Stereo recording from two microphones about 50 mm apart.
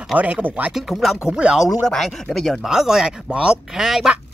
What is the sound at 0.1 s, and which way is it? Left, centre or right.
Speech, right.